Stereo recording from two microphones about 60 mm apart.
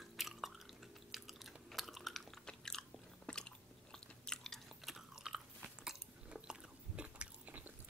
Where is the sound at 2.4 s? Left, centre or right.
Centre.